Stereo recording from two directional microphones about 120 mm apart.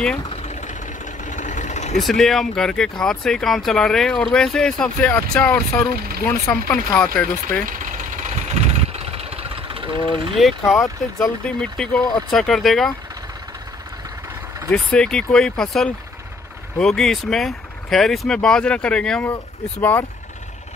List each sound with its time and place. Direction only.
0.3 s vehicle: 65° left (ahead or behind)
2.0 s speech: centre (ahead or behind)
8.2 s vehicle: 70° right (ahead or behind); by 10.3 s 50° right (ahead or behind)
10.3 s speech: centre (ahead or behind)
14.7 s speech: 5° left (ahead or behind)